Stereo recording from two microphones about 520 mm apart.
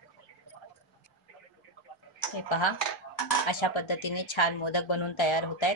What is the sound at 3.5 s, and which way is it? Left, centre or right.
Speech, left.